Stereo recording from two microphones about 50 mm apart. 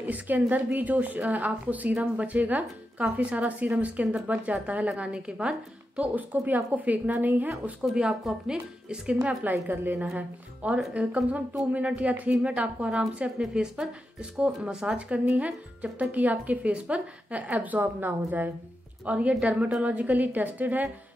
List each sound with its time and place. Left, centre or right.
0.0 s a woman's voice: right
6.1 s a woman's voice: right
7.8 s a woman's voice: centre
9.4 s a woman's voice: right
10.1 s speech: right
13.5 s a woman's voice: centre; by 20.9 s right